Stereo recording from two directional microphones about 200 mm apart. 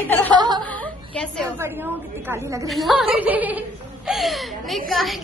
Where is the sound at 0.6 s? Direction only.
5° left (ahead or behind).